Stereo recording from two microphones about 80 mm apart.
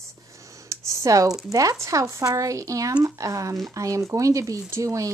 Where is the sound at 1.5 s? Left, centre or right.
Right.